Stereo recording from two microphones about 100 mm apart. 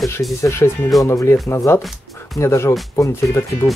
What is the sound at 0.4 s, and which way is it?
Speech, 30° left (ahead or behind).